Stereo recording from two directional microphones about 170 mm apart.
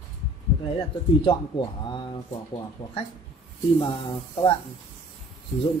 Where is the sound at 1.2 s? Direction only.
25° left (ahead or behind).